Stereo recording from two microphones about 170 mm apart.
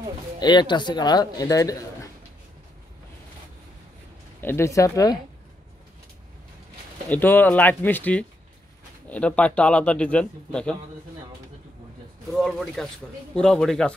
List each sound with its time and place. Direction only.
0.4 s speech: 25° left (ahead or behind)
4.4 s speech: 15° left (ahead or behind)
7.1 s speech: 10° left (ahead or behind)
12.3 s a man's voice: centre (ahead or behind)